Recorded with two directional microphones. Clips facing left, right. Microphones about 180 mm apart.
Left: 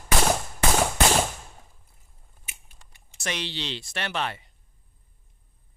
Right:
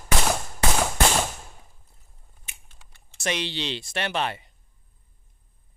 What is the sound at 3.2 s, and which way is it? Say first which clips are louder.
Speech: right 4 dB; 20° right (ahead or behind).